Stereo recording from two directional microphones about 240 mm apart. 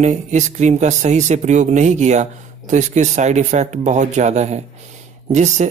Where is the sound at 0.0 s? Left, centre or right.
Right.